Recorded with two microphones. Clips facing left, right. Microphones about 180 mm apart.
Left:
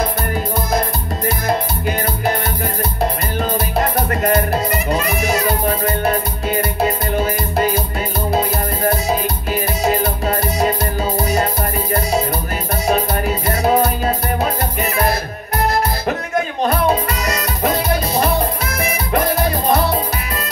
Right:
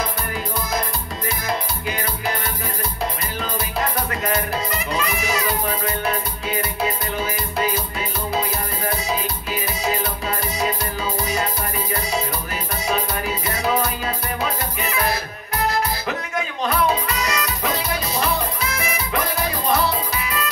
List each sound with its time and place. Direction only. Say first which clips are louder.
1.5 s music: left 6 dB; 50° left (ahead or behind)
12.8 s music: left 6 dB; 45° left (ahead or behind)